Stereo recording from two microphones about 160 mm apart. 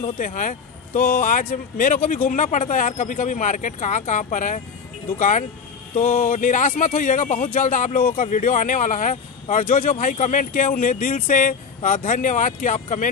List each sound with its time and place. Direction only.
0.2 s speech: 55° left (ahead or behind)
5.9 s speech: 55° left (ahead or behind)